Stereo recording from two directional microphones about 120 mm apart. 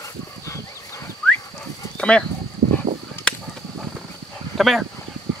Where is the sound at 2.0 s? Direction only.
10° left (ahead or behind).